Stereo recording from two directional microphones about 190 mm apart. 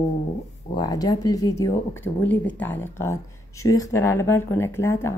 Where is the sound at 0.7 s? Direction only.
20° left (ahead or behind).